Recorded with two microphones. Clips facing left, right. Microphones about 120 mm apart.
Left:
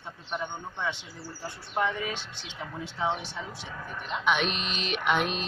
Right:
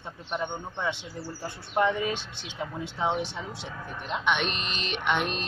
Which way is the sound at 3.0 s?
15° right (ahead or behind).